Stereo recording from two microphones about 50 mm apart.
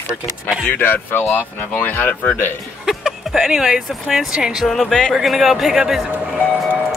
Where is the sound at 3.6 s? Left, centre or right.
Centre.